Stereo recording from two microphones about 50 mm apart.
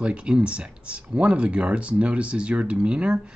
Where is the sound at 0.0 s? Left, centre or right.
Right.